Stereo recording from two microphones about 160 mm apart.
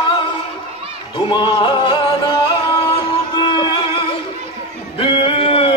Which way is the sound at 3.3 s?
30° left (ahead or behind).